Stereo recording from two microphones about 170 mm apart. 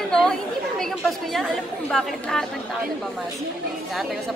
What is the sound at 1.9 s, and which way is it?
Speech, 5° left (ahead or behind).